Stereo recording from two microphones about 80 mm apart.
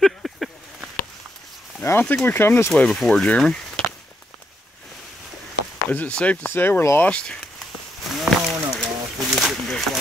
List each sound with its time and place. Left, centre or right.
0.0 s a sound: centre
1.8 s speech: left
2.9 s speech: centre
5.9 s speech: centre
6.4 s speech: left
7.0 s speech: centre
8.0 s a sound: centre